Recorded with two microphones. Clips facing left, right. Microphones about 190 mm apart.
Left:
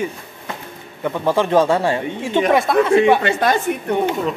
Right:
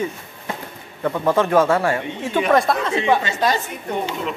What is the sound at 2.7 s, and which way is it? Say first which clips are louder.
Speech: left 6 dB; centre (ahead or behind).